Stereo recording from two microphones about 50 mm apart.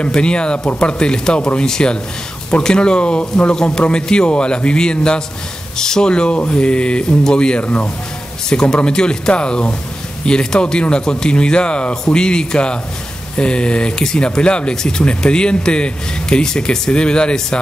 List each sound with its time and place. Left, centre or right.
0.0 s speech: centre